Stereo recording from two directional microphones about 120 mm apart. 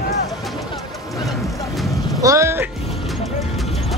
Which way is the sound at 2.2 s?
25° right (ahead or behind).